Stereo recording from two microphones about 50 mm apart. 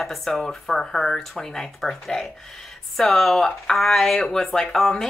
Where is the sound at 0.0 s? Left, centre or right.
Centre.